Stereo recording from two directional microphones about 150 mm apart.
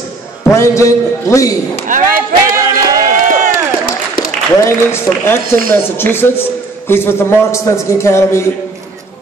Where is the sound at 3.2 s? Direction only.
65° right (ahead or behind).